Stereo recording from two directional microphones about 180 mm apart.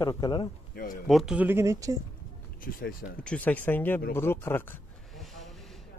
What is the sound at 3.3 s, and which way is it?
Speech, 10° left (ahead or behind).